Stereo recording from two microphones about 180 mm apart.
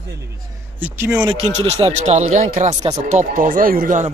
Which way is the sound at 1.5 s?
35° right (ahead or behind).